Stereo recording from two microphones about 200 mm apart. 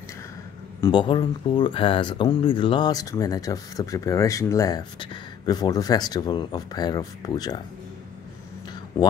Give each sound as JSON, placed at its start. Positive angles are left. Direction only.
{"t": 0.7, "sound": "speech", "side_deg": 20}